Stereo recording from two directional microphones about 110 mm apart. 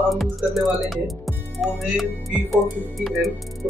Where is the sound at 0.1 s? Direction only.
Centre (ahead or behind).